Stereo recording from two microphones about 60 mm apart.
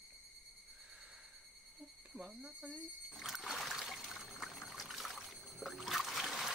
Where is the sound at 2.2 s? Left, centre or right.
Centre.